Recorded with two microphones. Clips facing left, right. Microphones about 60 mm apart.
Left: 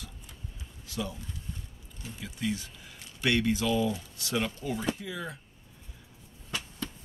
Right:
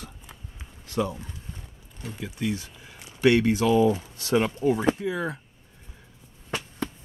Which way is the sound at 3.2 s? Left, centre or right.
Right.